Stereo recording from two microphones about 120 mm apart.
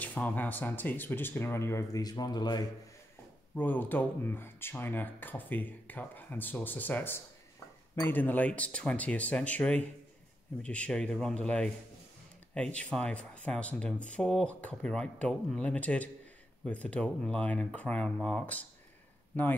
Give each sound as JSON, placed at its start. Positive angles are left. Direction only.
{"t": 0.0, "sound": "speech", "side_deg": 15}
{"t": 3.5, "sound": "speech", "side_deg": 15}